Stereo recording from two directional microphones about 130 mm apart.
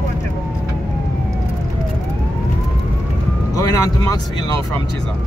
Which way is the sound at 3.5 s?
30° left (ahead or behind).